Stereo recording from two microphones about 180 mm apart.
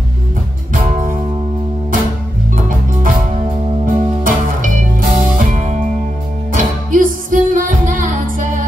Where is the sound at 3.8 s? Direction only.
50° right (ahead or behind).